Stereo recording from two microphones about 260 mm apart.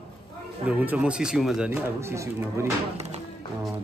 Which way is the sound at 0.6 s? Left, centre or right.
Centre.